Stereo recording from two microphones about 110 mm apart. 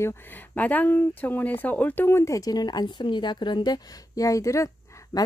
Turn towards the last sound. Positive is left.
turn(degrees=30)  # may be behind; listen again after turning